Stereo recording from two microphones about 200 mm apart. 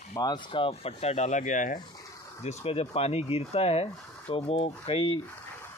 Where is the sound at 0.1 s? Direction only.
20° left (ahead or behind).